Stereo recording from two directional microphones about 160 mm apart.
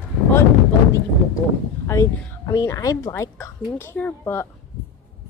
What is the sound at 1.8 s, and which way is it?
Speech, 20° left (ahead or behind).